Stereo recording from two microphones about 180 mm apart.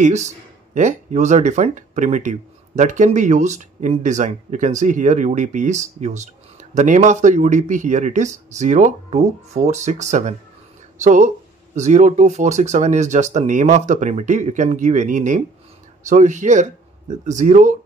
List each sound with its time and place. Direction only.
0.0 s speech: 40° right (ahead or behind)